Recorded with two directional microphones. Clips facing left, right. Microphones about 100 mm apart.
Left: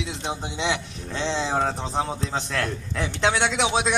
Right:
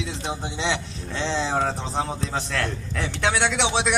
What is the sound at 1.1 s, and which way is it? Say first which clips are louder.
A man's voice: even; 30° left (ahead or behind).